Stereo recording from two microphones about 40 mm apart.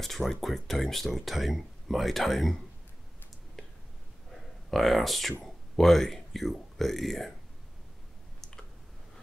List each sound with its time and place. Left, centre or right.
0.0 s speech: centre
3.6 s whispering: centre
4.3 s a sound: centre
5.4 s speech: centre
8.4 s clicking: centre